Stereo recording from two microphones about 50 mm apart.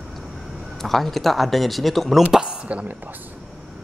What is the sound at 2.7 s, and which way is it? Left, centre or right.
Speech, right.